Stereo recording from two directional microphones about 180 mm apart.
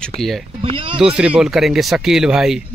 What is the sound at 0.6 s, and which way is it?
Speech, 30° right (ahead or behind).